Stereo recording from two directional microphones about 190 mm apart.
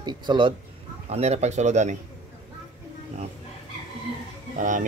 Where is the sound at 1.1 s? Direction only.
35° right (ahead or behind).